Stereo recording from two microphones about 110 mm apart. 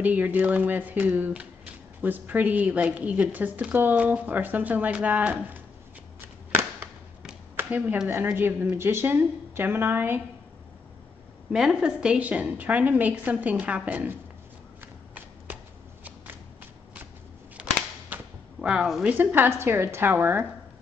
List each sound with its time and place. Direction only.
0.0 s speech: 15° right (ahead or behind)
7.5 s a sound: 15° right (ahead or behind)
8.1 s a woman's voice: 20° right (ahead or behind)
11.5 s speech: 5° right (ahead or behind)
15.1 s shuffling cards: 15° right (ahead or behind)
17.6 s cap gun: 10° right (ahead or behind)
18.1 s a sound: 10° right (ahead or behind)
19.0 s a woman's voice: 15° right (ahead or behind)